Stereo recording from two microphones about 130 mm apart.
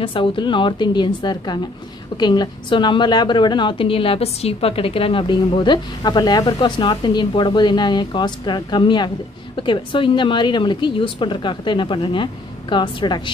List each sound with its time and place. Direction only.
0.0 s a woman's voice: 40° left (ahead or behind)